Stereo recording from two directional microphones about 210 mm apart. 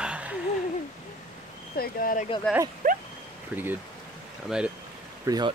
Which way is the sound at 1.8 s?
40° left (ahead or behind).